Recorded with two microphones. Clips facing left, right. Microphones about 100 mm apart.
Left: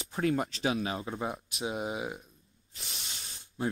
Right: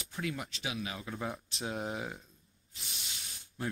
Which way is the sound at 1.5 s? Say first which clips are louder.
Left 3 dB; 10° left (ahead or behind).